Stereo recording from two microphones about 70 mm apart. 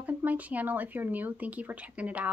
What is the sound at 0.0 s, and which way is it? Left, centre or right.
Speech, right.